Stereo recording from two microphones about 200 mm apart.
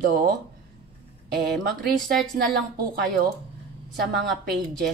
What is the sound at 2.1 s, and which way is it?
Speech, centre (ahead or behind).